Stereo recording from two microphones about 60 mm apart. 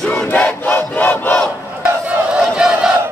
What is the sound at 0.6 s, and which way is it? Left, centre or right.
Battle cry, left.